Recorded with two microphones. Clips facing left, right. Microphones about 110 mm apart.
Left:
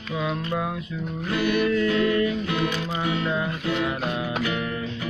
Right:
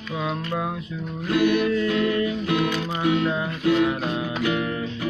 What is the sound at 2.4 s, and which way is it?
Music, 15° right (ahead or behind).